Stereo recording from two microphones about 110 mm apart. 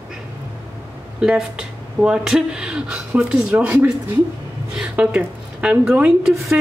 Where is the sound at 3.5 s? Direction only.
20° right (ahead or behind).